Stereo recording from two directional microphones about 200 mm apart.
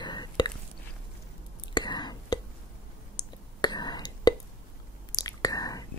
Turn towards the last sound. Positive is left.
turn(degrees=20)  # may be behind; listen again after turning